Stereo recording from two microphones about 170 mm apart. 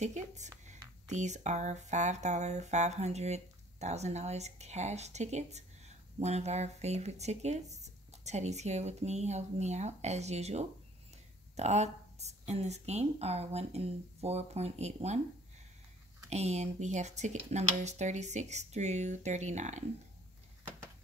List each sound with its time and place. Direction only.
0.0 s speech: 45° right (ahead or behind)
16.3 s speech: 40° right (ahead or behind)